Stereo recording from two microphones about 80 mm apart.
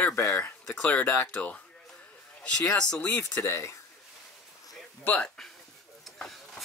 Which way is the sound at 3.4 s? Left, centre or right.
Left.